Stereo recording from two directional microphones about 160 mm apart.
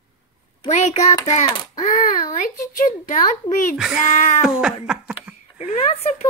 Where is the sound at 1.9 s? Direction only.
55° left (ahead or behind).